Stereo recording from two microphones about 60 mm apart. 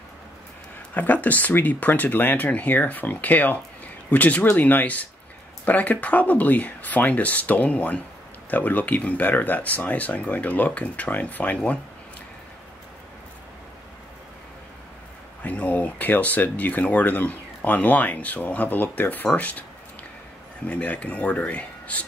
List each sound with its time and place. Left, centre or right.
0.9 s speech: left
15.4 s speech: left
20.6 s speech: left